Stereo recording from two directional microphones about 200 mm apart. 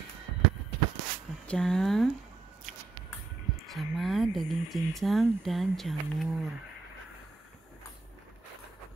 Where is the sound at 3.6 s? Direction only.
Centre (ahead or behind).